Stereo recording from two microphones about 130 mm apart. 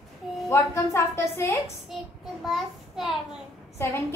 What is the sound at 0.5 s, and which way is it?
A woman's voice, 20° left (ahead or behind).